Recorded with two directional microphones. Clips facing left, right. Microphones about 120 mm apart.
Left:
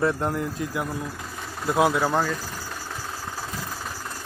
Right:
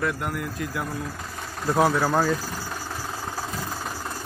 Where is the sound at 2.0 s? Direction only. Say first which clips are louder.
Right 1 dB; 5° right (ahead or behind).